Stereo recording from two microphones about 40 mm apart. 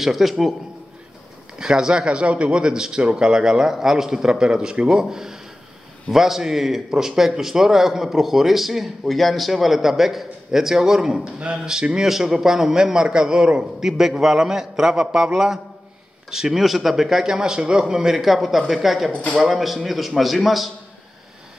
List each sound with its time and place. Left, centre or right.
0.0 s a man's voice: centre
1.6 s speech: centre
13.8 s a man's voice: centre